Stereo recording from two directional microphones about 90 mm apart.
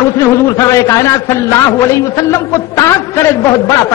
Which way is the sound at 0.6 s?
35° left (ahead or behind).